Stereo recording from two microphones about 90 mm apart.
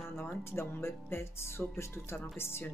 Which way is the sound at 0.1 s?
30° left (ahead or behind).